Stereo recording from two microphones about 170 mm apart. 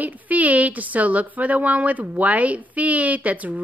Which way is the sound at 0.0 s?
10° right (ahead or behind).